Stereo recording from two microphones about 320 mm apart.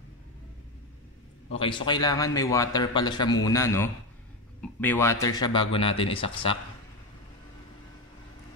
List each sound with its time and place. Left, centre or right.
1.5 s speech: centre